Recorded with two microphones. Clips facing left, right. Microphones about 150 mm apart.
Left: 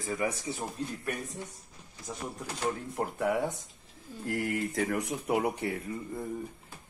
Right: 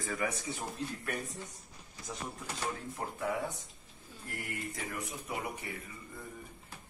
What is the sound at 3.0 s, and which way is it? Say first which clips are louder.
Speech: left 6 dB; 65° left (ahead or behind).